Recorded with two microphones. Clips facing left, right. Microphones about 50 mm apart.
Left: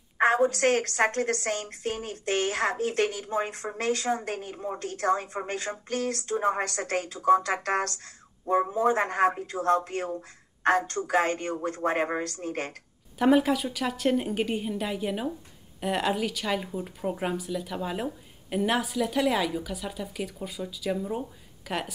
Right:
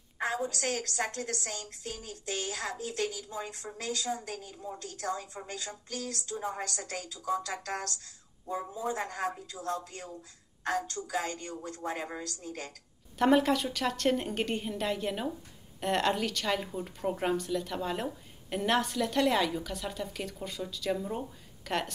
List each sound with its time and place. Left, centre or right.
0.2 s a woman's voice: left
13.2 s speech: centre